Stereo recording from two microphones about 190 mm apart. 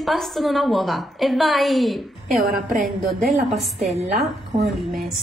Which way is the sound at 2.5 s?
45° right (ahead or behind).